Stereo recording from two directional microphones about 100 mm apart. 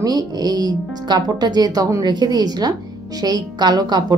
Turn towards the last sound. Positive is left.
turn(degrees=-45)  # may be behind; listen again after turning